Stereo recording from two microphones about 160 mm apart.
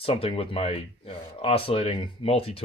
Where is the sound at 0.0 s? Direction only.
35° left (ahead or behind).